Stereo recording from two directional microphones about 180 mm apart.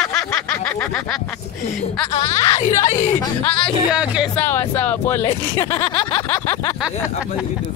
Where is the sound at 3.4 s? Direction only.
5° left (ahead or behind).